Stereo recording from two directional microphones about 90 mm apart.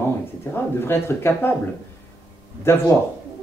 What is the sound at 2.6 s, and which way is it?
Speech, 25° left (ahead or behind).